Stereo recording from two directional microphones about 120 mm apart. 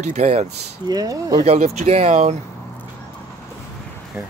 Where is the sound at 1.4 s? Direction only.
60° right (ahead or behind).